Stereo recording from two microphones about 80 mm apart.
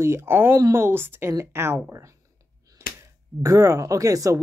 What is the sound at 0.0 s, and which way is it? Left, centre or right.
Speech, right.